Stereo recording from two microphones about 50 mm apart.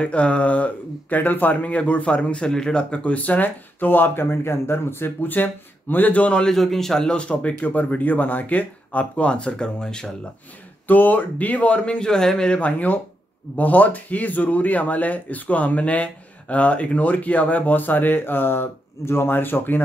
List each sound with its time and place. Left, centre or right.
0.0 s speech: left
6.4 s a man's voice: centre
7.1 s speech: left
7.6 s speech: left; by 10.1 s centre
10.9 s speech: left; by 12.5 s centre
12.5 s speech: left